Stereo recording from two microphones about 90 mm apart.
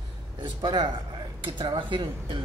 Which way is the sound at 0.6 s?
60° right (ahead or behind).